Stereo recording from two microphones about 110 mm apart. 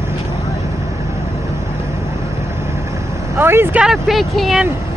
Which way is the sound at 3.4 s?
20° right (ahead or behind).